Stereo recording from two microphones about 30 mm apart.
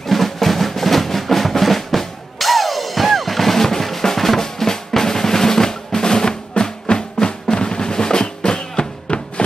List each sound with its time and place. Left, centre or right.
0.0 s music: centre; by 7.3 s left
7.5 s drum: left